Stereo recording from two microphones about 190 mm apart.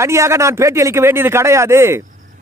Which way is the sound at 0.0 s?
15° right (ahead or behind).